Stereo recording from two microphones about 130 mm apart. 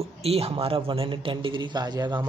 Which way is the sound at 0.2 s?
50° right (ahead or behind).